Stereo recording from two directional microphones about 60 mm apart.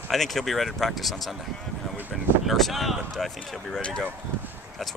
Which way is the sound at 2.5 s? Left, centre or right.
Centre.